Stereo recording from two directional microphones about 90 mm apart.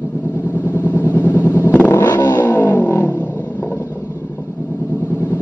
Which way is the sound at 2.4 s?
20° left (ahead or behind).